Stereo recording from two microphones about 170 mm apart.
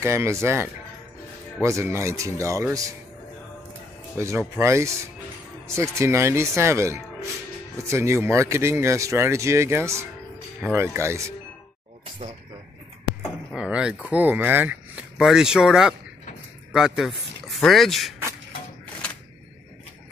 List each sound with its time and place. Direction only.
0.0 s speech: 15° right (ahead or behind)
4.2 s speech: 15° right (ahead or behind)
13.5 s speech: 5° right (ahead or behind)